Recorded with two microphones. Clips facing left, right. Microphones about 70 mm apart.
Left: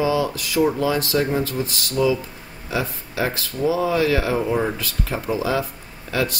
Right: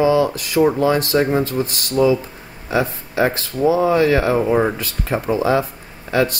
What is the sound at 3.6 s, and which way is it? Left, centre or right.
Speech, right.